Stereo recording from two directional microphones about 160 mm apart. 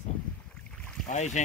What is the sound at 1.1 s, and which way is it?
Speech, 50° left (ahead or behind).